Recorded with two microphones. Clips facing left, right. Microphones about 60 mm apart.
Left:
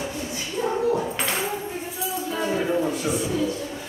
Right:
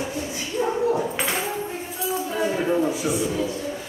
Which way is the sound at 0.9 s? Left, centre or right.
Centre.